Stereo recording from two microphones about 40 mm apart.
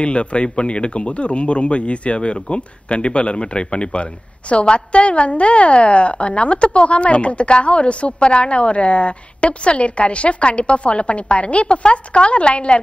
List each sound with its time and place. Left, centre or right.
0.0 s speech: left